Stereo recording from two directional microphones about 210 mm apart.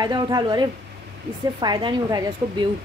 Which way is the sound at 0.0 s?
20° right (ahead or behind).